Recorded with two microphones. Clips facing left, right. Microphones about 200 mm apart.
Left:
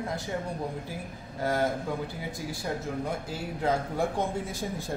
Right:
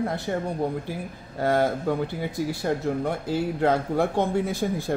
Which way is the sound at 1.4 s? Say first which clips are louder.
Right 5 dB; 65° right (ahead or behind).